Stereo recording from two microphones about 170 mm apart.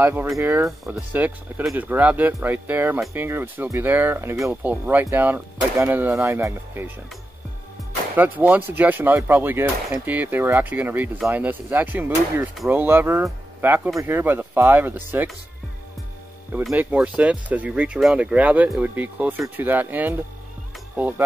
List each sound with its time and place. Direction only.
0.0 s speech: 10° right (ahead or behind)
8.2 s speech: 10° right (ahead or behind)
16.6 s speech: 5° right (ahead or behind)